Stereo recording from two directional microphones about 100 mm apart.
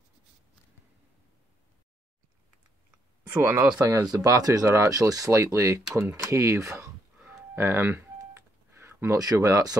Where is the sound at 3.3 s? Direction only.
30° right (ahead or behind).